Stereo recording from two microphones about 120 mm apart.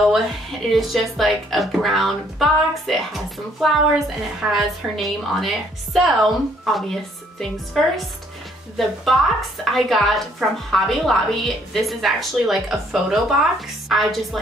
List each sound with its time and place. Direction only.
0.0 s a woman's voice: centre (ahead or behind)